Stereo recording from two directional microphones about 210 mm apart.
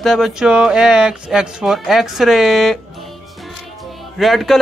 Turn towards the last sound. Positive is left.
turn(degrees=0)  # may be behind; listen again after turning